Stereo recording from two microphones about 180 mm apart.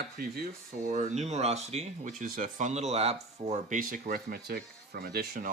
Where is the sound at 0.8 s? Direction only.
40° right (ahead or behind).